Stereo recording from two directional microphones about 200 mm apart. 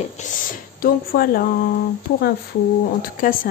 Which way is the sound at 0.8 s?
45° left (ahead or behind).